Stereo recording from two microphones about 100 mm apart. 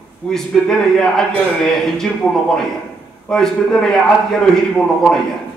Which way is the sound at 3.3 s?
5° left (ahead or behind).